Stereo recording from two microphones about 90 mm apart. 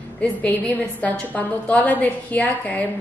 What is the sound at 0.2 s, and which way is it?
A woman's voice, 15° left (ahead or behind).